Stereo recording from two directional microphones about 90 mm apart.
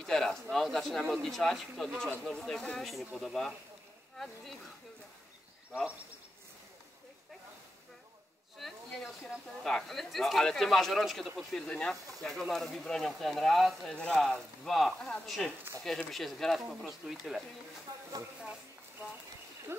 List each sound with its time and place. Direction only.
0.0 s speech: 5° left (ahead or behind)
8.5 s a sound: centre (ahead or behind)
9.7 s speech: 5° left (ahead or behind)
17.9 s speech: 40° right (ahead or behind)